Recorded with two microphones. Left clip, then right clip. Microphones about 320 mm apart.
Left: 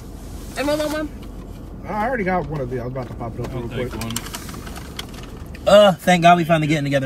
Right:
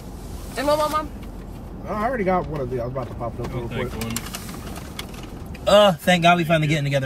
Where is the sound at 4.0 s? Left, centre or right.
Centre.